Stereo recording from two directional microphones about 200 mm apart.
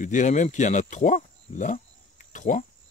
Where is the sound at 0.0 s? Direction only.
40° left (ahead or behind).